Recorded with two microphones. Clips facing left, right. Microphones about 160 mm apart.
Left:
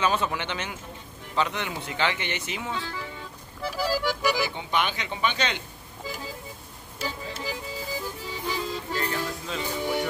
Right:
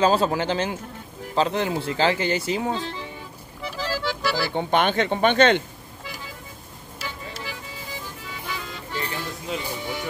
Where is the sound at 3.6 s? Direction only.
10° left (ahead or behind).